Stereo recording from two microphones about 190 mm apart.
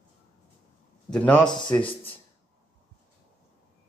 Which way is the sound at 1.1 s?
5° left (ahead or behind).